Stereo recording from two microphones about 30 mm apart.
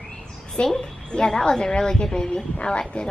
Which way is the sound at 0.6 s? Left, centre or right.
Left.